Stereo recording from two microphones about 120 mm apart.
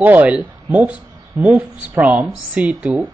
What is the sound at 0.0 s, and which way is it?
A man's voice, 15° right (ahead or behind).